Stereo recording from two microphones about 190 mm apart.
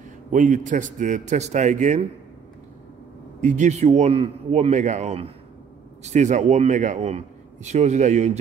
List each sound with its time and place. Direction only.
0.3 s a man's voice: 40° right (ahead or behind)
3.3 s a man's voice: 40° right (ahead or behind)